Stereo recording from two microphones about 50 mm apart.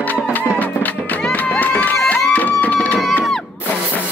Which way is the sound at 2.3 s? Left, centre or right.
Left.